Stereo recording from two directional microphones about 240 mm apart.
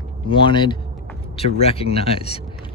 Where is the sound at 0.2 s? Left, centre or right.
Left.